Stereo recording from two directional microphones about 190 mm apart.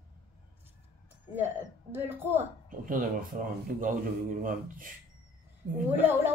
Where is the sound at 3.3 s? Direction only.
45° right (ahead or behind).